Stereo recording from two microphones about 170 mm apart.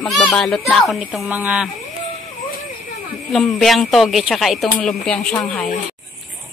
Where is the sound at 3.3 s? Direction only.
Centre (ahead or behind).